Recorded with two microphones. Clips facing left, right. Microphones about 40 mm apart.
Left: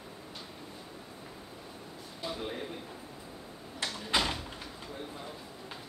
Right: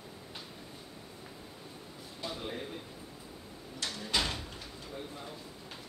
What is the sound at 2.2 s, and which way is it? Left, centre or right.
Speech, centre.